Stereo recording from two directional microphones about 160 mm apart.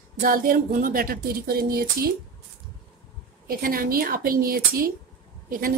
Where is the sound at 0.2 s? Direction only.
60° right (ahead or behind).